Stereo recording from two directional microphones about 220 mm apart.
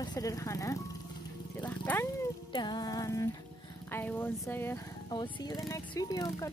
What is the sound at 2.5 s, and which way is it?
Music, 20° left (ahead or behind).